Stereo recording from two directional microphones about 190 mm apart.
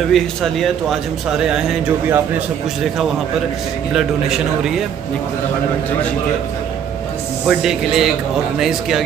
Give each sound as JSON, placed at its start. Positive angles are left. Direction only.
{"t": 0.1, "sound": "speech", "side_deg": 0}
{"t": 3.9, "sound": "speech", "side_deg": 0}
{"t": 7.4, "sound": "speech", "side_deg": 0}